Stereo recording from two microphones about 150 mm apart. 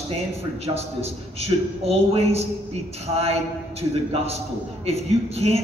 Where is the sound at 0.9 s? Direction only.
45° right (ahead or behind).